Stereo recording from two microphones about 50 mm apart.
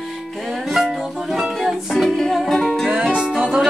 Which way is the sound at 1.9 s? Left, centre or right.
Centre.